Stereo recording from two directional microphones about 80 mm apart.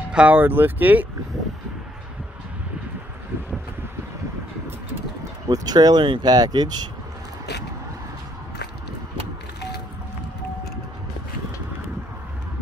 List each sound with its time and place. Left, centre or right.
0.1 s speech: centre
0.4 s speech: right
5.5 s speech: right